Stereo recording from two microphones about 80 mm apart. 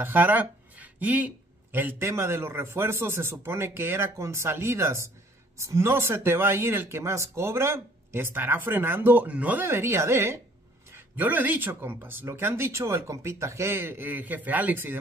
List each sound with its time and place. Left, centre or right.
0.0 s speech: right
9.7 s speech: right
11.1 s speech: right